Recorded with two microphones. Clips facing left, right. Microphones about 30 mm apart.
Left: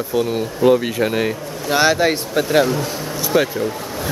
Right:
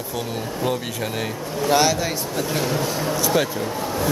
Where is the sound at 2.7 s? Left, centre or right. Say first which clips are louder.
Left 1 dB; centre.